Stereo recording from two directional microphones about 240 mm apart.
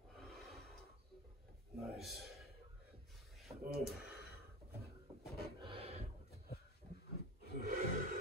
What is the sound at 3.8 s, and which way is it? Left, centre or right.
Gasp, centre.